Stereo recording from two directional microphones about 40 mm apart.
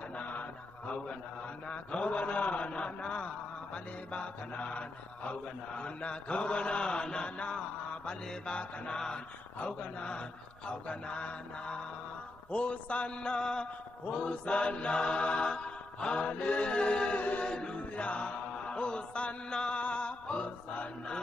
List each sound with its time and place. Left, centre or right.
0.2 s mantra: left
1.7 s mantra: left
8.9 s a sound: centre
9.6 s mantra: left
19.5 s music: left